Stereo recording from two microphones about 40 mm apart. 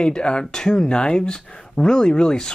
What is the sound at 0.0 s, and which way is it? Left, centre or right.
Speech, left.